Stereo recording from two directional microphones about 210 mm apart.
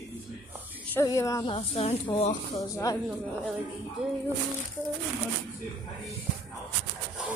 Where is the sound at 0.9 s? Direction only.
15° left (ahead or behind).